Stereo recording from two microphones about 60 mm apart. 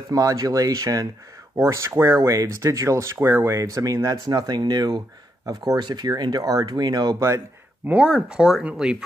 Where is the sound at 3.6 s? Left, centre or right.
Right.